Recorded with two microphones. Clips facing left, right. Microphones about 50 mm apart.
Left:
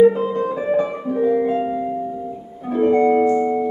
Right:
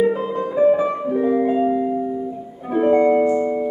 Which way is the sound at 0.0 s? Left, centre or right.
Centre.